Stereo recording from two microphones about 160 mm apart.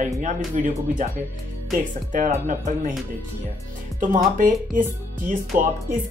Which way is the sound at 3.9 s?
55° right (ahead or behind).